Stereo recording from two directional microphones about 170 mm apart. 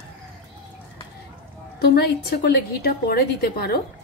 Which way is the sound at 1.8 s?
70° left (ahead or behind).